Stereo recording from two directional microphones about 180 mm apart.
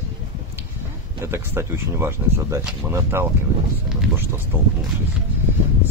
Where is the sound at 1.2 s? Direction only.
15° right (ahead or behind).